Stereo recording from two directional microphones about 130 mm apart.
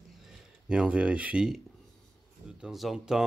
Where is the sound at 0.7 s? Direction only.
5° right (ahead or behind).